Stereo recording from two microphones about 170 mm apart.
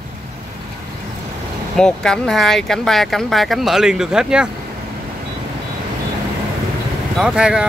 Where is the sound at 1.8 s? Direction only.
5° left (ahead or behind).